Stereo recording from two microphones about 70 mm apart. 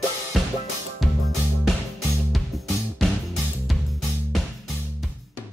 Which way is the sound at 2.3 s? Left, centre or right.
Centre.